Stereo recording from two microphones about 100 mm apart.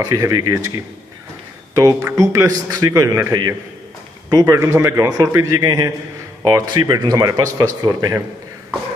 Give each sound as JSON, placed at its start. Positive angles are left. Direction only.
{"t": 0.0, "sound": "speech", "side_deg": -35}
{"t": 1.8, "sound": "speech", "side_deg": -35}